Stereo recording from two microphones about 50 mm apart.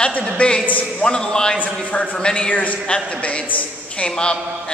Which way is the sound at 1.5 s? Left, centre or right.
Left.